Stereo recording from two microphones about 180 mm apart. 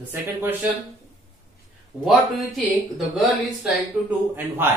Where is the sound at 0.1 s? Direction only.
10° right (ahead or behind).